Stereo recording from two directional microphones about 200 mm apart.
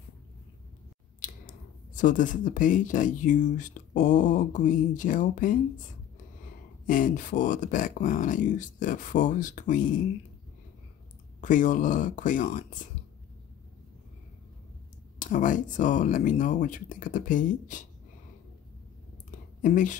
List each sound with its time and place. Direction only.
2.0 s speech: 40° left (ahead or behind)
6.9 s speech: 40° left (ahead or behind)
11.4 s speech: 40° left (ahead or behind)
15.1 s speech: 40° left (ahead or behind)
19.6 s speech: 40° left (ahead or behind)